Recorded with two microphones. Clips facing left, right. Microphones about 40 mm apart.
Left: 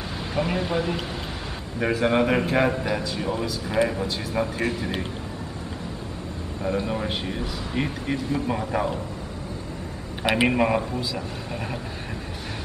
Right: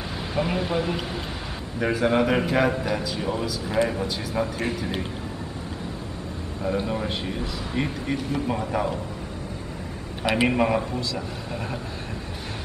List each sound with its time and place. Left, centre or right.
0.4 s a man's voice: centre
6.9 s a man's voice: centre
10.2 s a man's voice: centre